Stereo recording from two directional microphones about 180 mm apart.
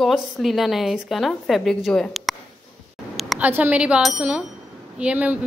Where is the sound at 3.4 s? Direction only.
10° right (ahead or behind).